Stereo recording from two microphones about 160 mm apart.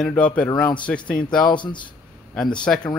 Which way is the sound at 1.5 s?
30° left (ahead or behind).